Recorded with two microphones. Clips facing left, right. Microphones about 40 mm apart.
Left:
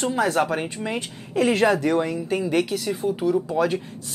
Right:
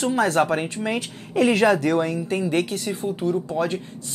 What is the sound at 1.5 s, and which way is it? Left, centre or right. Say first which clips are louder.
Speech: even; centre.